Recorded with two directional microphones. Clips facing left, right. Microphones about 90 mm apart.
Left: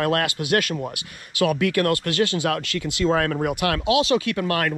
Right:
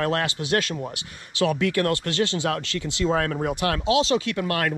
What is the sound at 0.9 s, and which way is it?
Speech, 30° right (ahead or behind).